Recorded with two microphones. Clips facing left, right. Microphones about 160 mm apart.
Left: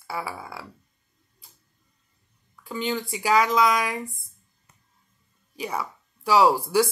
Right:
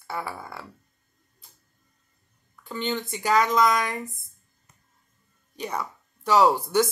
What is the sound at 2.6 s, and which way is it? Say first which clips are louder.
Speech: left 1 dB; 5° left (ahead or behind).